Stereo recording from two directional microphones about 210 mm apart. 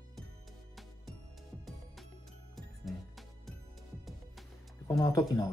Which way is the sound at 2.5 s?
Centre (ahead or behind).